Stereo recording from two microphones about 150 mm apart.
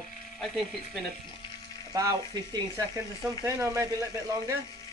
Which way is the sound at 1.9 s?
25° right (ahead or behind).